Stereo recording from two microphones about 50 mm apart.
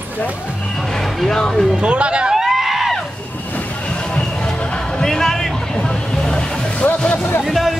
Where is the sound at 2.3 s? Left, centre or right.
Centre.